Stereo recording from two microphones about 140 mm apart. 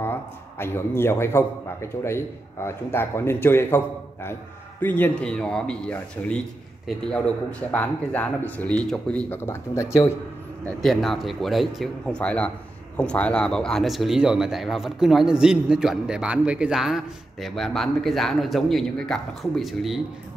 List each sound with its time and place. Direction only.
0.0 s a man's voice: 15° left (ahead or behind)
10.6 s speech: centre (ahead or behind)